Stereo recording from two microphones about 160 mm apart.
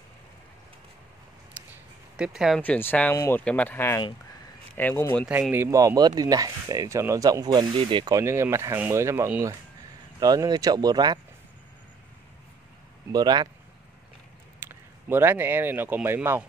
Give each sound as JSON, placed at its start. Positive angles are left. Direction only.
{"t": 1.6, "sound": "a sound", "side_deg": -10}
{"t": 2.1, "sound": "speech", "side_deg": -5}
{"t": 2.6, "sound": "speech", "side_deg": 10}
{"t": 5.5, "sound": "speech", "side_deg": -20}
{"t": 13.1, "sound": "speech", "side_deg": -25}
{"t": 14.6, "sound": "speech", "side_deg": -15}